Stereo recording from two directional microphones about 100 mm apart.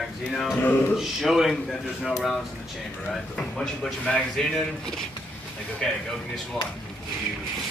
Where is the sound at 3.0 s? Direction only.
5° left (ahead or behind).